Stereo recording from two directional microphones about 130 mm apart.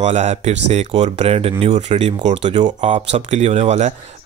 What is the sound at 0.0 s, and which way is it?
A man's voice, 60° right (ahead or behind).